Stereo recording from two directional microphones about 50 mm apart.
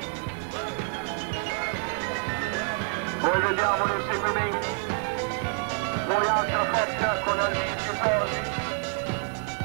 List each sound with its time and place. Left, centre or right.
3.2 s music: left
6.0 s music: left